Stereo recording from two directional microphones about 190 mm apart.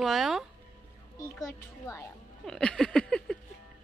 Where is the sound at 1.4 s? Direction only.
15° left (ahead or behind).